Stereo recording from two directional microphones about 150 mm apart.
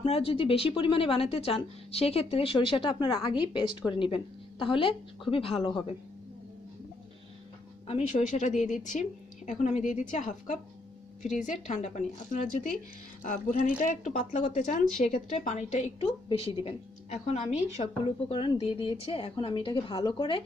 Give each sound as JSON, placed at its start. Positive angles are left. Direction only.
{"t": 0.0, "sound": "speech", "side_deg": 40}
{"t": 7.8, "sound": "a woman's voice", "side_deg": 45}
{"t": 13.5, "sound": "a woman's voice", "side_deg": 70}
{"t": 16.3, "sound": "speech", "side_deg": 35}